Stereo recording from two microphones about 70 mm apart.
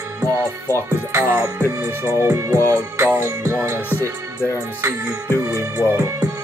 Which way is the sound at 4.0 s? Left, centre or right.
Left.